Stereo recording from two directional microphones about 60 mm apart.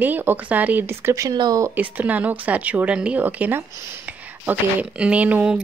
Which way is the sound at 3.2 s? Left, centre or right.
Right.